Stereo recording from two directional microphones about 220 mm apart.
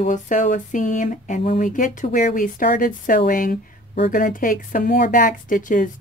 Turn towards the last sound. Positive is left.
turn(degrees=35)  # may be behind; listen again after turning